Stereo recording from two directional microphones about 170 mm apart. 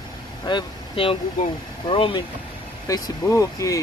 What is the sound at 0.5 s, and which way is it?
Speech, 30° left (ahead or behind).